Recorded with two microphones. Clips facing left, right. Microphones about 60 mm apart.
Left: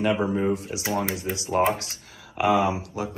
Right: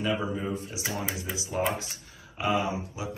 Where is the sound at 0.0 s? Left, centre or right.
Left.